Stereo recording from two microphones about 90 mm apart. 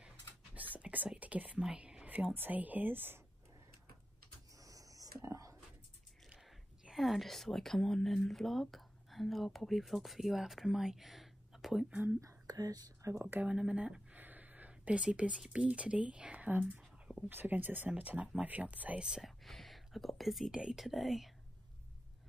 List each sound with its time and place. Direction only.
0.7 s whispering: 15° right (ahead or behind)
1.6 s speech: 10° right (ahead or behind)
4.6 s a sound: 40° right (ahead or behind)
6.2 s speech: 5° right (ahead or behind)
11.9 s speech: 15° right (ahead or behind)
12.2 s speech: 40° right (ahead or behind)
13.2 s speech: 20° right (ahead or behind); by 21.3 s centre (ahead or behind)